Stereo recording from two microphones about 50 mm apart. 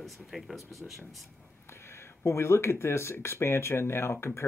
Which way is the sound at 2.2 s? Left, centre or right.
Left.